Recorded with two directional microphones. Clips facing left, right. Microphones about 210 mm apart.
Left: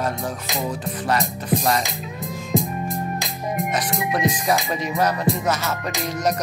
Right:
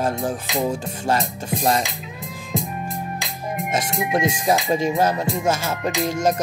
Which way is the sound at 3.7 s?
25° right (ahead or behind).